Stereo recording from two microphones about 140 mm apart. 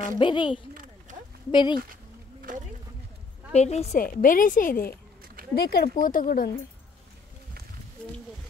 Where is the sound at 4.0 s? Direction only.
75° left (ahead or behind).